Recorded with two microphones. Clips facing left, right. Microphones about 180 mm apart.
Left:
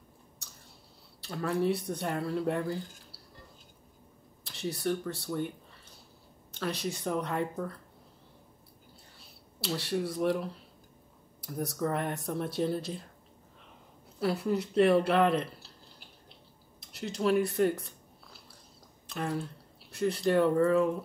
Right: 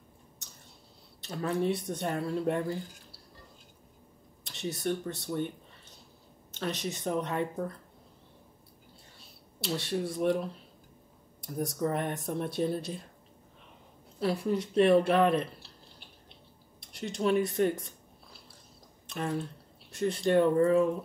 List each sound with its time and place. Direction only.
1.2 s speech: 20° right (ahead or behind)
4.5 s speech: 20° right (ahead or behind)
6.5 s speech: 20° right (ahead or behind)
9.8 s speech: 25° right (ahead or behind)
11.4 s speech: 20° right (ahead or behind)
14.2 s speech: 25° right (ahead or behind)
16.9 s speech: 25° right (ahead or behind)